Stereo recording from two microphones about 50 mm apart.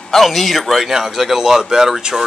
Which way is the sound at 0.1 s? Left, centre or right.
Centre.